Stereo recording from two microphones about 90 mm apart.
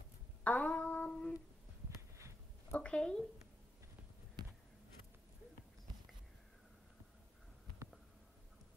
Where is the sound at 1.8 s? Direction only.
35° right (ahead or behind).